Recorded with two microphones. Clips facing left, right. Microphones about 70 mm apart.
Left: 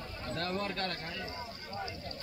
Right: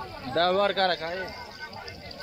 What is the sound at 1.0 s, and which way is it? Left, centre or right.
Speech, right.